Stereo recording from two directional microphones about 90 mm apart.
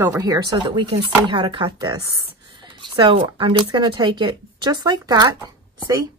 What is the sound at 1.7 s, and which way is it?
Speech, 50° right (ahead or behind).